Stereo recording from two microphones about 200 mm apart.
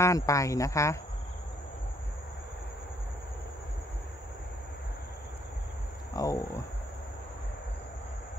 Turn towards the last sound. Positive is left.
turn(degrees=15)  # may be behind; listen again after turning